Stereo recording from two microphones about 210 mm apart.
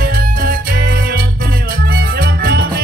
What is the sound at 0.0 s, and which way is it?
Music, 45° right (ahead or behind).